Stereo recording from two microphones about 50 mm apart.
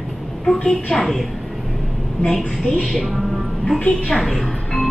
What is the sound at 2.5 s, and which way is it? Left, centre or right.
A woman's voice, centre.